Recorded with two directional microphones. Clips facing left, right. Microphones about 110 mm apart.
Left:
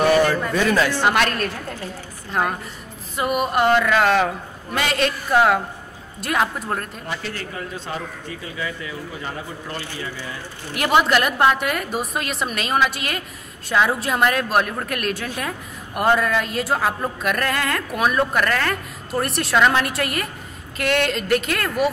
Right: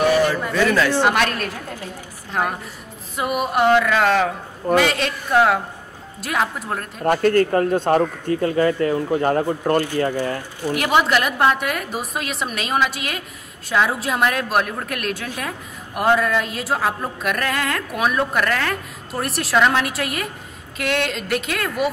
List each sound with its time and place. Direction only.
0.1 s a sound: 10° right (ahead or behind)
1.0 s a woman's voice: centre (ahead or behind)
7.1 s speech: 50° right (ahead or behind)
10.7 s a woman's voice: centre (ahead or behind)